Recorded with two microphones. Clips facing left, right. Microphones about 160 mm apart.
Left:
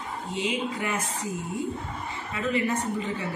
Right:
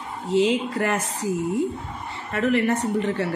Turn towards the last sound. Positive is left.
turn(degrees=-75)  # may be behind; listen again after turning